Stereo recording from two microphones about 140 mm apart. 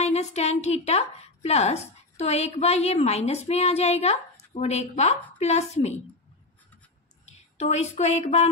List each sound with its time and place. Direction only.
0.0 s a woman's voice: 50° left (ahead or behind)
7.2 s speech: 55° left (ahead or behind)